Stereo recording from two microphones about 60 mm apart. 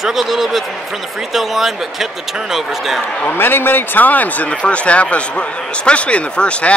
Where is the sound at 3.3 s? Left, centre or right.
Left.